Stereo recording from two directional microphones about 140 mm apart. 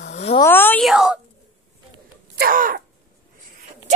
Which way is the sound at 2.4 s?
80° right.